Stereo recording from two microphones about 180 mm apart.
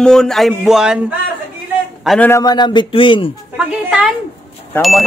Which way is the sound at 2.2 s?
20° left (ahead or behind).